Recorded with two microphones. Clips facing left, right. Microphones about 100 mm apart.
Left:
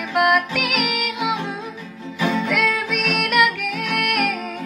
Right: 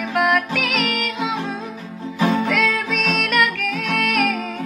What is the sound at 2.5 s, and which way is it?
Music, 5° left (ahead or behind).